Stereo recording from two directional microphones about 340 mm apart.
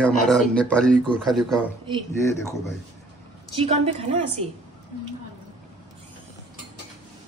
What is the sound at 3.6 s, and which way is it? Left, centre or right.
Speech, centre.